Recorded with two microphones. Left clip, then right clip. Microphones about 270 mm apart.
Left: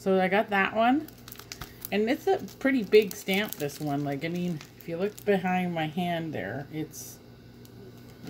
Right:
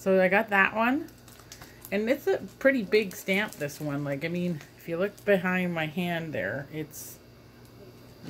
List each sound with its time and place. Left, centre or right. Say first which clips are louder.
0.0 s speech: right 2 dB; centre